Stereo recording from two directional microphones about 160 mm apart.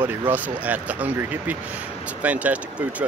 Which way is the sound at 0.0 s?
10° right (ahead or behind).